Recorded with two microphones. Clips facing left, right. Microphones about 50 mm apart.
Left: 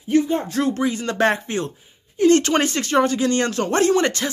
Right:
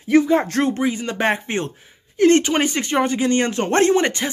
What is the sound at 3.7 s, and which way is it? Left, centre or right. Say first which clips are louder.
Speech: right 2 dB; right.